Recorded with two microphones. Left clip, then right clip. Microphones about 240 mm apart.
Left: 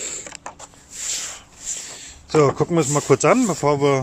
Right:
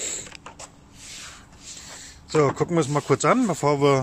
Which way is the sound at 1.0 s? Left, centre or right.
Left.